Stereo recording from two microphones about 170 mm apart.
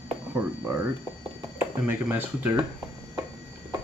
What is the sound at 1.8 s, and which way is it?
Speech, 10° right (ahead or behind).